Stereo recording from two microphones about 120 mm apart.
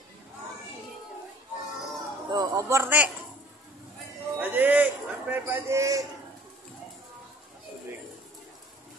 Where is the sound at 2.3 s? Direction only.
30° right (ahead or behind).